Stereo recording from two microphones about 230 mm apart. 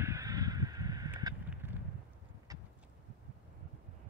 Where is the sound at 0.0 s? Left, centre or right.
Centre.